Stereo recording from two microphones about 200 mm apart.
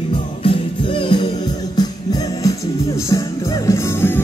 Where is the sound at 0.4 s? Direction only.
25° left (ahead or behind).